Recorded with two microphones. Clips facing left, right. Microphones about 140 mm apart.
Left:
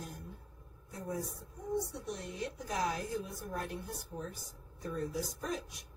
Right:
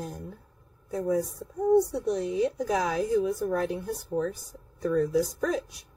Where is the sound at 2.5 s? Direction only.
90° right.